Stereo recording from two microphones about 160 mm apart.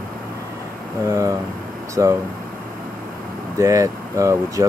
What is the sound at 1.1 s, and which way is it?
Speech, 20° right (ahead or behind).